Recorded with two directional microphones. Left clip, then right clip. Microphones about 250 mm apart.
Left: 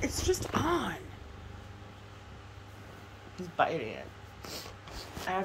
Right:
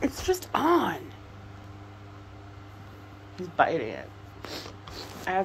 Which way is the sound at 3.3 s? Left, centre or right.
Centre.